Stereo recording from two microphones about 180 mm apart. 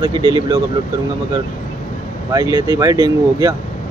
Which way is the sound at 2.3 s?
20° right (ahead or behind).